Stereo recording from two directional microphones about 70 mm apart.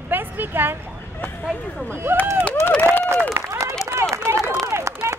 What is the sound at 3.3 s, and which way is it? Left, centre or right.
Run, right.